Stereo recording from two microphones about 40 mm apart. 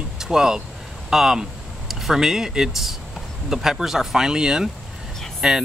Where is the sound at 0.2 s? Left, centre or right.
Centre.